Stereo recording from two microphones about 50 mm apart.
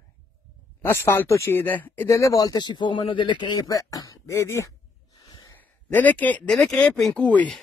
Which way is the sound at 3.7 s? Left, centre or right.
Left.